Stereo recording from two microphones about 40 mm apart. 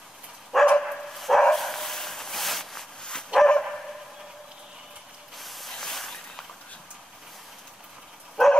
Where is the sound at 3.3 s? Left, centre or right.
Right.